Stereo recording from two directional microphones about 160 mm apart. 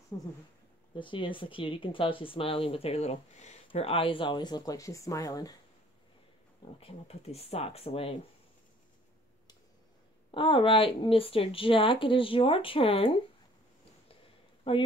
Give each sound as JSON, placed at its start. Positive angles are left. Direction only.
{"t": 0.1, "sound": "speech", "side_deg": 25}
{"t": 6.6, "sound": "speech", "side_deg": 40}
{"t": 10.3, "sound": "speech", "side_deg": 30}
{"t": 14.7, "sound": "speech", "side_deg": 35}